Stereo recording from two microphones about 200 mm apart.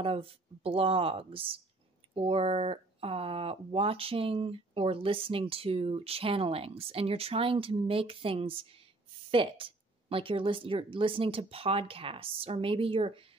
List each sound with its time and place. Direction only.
0.0 s speech: 25° right (ahead or behind)